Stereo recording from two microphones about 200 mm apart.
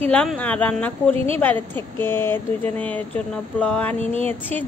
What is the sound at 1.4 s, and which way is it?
A woman's voice, 10° left (ahead or behind).